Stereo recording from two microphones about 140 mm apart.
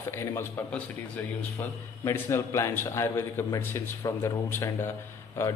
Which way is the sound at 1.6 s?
20° left (ahead or behind).